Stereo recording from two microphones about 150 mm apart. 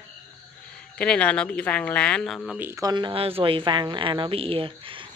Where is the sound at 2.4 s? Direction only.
15° right (ahead or behind).